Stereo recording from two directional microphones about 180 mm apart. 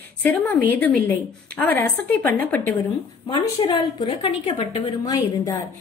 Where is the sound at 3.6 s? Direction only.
25° left (ahead or behind).